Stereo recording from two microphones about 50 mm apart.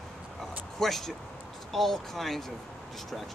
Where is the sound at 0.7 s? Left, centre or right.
Centre.